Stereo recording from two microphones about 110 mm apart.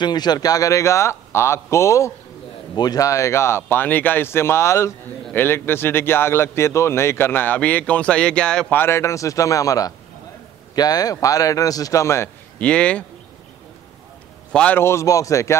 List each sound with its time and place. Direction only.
0.0 s a man's voice: 40° left (ahead or behind)
2.7 s a man's voice: 40° left (ahead or behind); by 8.7 s 10° left (ahead or behind)
8.7 s a man's voice: 25° left (ahead or behind)
12.5 s speech: 10° left (ahead or behind)
14.5 s a man's voice: 10° left (ahead or behind)
14.8 s a man's voice: 25° left (ahead or behind)